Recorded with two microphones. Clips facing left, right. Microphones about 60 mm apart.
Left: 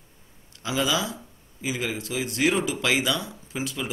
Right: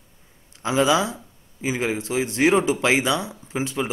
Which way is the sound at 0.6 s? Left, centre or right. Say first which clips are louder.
Right 6 dB; right.